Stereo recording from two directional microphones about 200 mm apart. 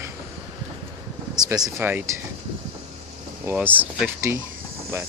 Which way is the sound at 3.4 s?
10° right (ahead or behind).